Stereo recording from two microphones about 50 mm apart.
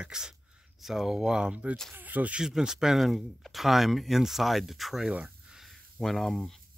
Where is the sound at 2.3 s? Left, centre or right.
Centre.